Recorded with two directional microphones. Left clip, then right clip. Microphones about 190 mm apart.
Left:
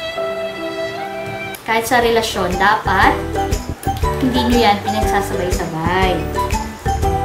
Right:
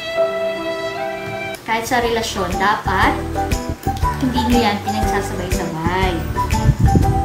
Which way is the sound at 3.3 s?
Centre (ahead or behind).